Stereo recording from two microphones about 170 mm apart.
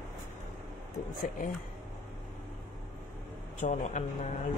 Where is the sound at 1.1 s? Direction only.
50° left (ahead or behind).